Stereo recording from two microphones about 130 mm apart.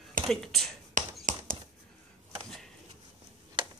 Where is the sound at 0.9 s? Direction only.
90° right.